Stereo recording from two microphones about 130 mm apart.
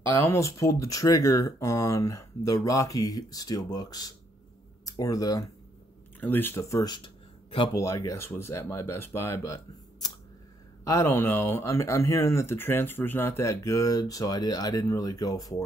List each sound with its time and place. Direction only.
0.1 s speech: 15° left (ahead or behind)
6.1 s speech: 15° left (ahead or behind)
6.8 s speech: 30° left (ahead or behind)